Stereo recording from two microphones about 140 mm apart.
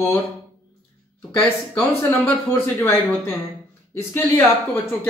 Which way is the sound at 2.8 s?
15° left (ahead or behind).